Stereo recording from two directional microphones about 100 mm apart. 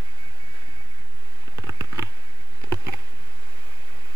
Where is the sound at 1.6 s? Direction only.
35° right (ahead or behind).